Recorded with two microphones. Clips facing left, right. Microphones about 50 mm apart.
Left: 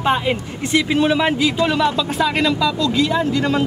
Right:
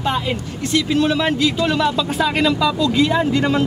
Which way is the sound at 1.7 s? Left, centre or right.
Centre.